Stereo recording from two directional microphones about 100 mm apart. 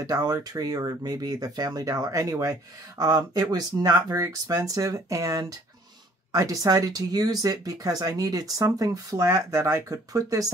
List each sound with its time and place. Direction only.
0.0 s speech: 40° right (ahead or behind)